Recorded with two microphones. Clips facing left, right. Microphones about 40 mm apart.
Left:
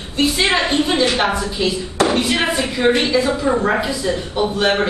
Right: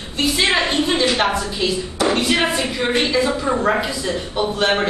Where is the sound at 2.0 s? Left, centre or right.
Centre.